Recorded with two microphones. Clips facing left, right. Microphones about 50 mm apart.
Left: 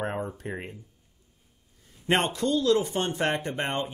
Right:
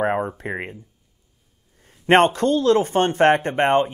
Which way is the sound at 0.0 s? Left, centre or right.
Right.